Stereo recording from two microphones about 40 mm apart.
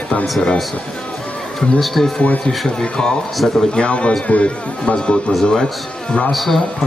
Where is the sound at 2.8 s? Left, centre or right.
Left.